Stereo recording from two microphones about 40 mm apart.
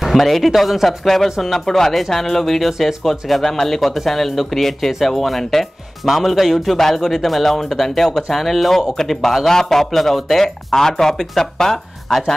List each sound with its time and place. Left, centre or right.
0.0 s a man's voice: centre